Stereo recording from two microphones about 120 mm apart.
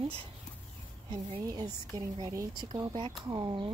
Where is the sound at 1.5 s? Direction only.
30° right (ahead or behind).